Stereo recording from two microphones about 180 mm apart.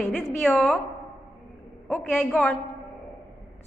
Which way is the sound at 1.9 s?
5° left (ahead or behind).